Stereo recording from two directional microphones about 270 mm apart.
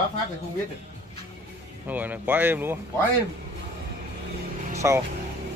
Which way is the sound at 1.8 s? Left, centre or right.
Centre.